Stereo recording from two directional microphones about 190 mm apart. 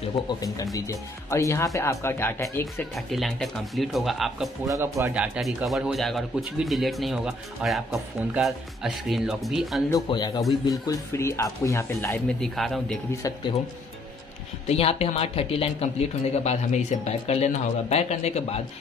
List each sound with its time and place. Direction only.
0.3 s speech: 20° left (ahead or behind)
3.1 s speech: centre (ahead or behind)
4.6 s speech: 15° right (ahead or behind)
5.1 s speech: 5° right (ahead or behind)
9.9 s speech: 20° left (ahead or behind); by 13.0 s centre (ahead or behind)
14.7 s speech: 30° left (ahead or behind)